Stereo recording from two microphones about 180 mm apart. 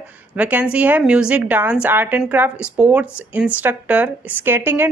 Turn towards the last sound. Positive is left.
turn(degrees=-10)  # may be behind; listen again after turning